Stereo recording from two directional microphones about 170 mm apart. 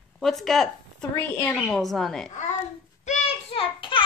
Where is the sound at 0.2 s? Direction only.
Centre (ahead or behind).